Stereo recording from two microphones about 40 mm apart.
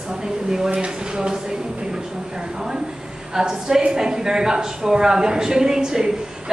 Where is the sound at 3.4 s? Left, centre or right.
Centre.